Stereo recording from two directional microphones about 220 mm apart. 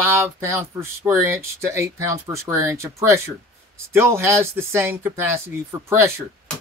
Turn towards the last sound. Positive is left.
turn(degrees=-10)  # may be behind; listen again after turning